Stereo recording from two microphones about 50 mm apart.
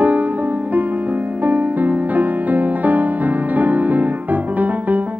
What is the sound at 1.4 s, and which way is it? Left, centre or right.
Music, right.